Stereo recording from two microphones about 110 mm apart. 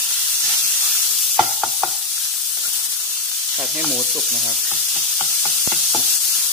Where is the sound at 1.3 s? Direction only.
Centre (ahead or behind).